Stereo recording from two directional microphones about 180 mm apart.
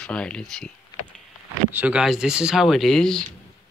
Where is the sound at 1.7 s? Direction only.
10° right (ahead or behind).